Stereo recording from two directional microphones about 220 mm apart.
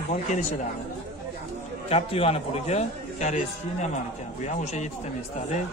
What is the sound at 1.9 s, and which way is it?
Speech, 25° left (ahead or behind).